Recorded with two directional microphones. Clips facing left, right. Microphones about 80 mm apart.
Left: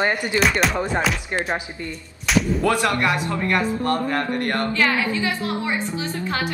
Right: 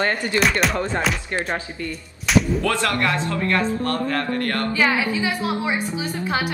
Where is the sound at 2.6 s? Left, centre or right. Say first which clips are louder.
Left 2 dB; left.